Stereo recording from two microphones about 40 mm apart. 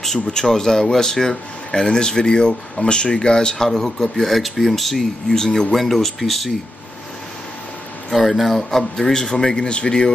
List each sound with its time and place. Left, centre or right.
0.3 s speech: centre
8.1 s speech: centre; by 10.1 s left